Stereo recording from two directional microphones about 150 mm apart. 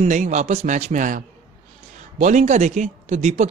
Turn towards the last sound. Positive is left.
turn(degrees=-50)  # may be behind; listen again after turning